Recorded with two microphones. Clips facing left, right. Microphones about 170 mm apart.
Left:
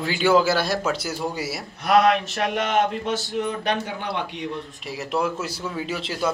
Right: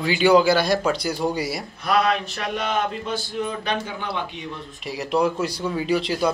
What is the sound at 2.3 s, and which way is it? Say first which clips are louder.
Speech: left 3 dB; 90° left.